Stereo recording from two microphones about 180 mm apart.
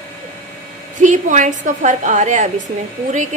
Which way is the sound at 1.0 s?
45° right (ahead or behind).